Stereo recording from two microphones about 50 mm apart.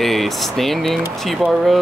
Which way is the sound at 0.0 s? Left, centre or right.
Centre.